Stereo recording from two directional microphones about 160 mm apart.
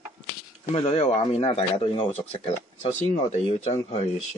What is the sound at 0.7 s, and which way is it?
Speech, 35° left (ahead or behind).